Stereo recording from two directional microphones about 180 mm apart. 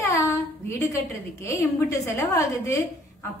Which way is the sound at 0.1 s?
15° left (ahead or behind).